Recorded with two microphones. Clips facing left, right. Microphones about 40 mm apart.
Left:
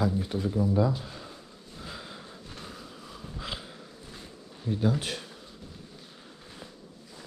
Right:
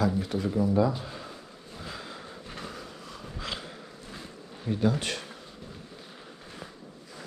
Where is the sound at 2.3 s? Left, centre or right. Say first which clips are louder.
Right 4 dB; right.